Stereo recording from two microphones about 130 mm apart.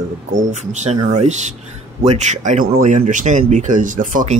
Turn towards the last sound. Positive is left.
turn(degrees=-85)